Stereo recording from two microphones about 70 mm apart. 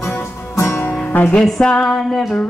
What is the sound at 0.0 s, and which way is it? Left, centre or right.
Music, left.